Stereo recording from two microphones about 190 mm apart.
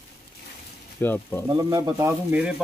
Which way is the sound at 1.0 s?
10° left (ahead or behind).